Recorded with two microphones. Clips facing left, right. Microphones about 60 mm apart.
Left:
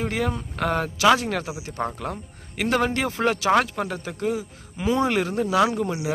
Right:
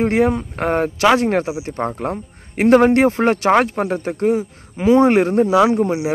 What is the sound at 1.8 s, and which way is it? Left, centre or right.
Speech, right.